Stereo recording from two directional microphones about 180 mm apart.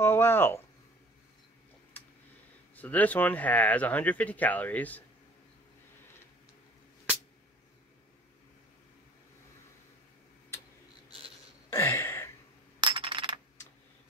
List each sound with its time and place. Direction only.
0.0 s speech: 15° left (ahead or behind)
2.7 s speech: 10° left (ahead or behind)
11.7 s a sound: 15° left (ahead or behind)
12.8 s coin: 25° right (ahead or behind)